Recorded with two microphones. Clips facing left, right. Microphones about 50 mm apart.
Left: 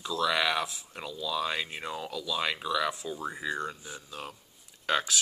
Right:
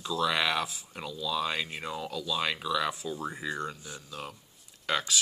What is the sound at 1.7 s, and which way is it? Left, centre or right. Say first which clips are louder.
Speech: even; centre.